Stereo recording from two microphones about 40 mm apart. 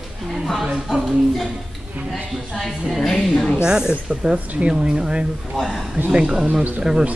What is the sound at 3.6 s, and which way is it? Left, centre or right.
A woman's voice, centre.